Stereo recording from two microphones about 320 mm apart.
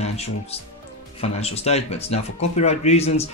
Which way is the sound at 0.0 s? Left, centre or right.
Centre.